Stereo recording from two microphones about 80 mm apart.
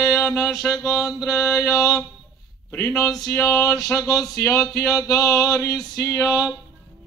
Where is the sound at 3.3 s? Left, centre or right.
Left.